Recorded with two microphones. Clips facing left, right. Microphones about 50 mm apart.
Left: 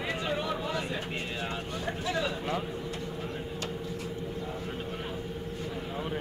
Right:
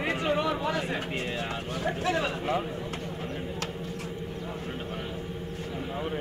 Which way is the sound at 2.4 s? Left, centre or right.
Centre.